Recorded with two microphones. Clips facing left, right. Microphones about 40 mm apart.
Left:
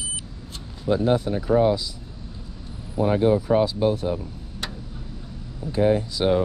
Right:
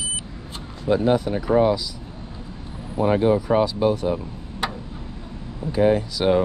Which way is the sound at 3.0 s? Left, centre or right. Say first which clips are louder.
Right 2 dB; right.